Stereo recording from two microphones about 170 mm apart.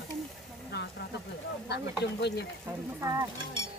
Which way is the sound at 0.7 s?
75° left (ahead or behind).